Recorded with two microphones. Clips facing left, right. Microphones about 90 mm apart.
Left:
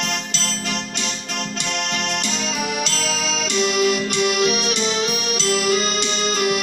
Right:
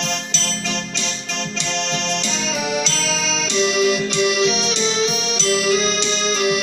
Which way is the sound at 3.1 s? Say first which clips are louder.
Right 1 dB; 45° left (ahead or behind).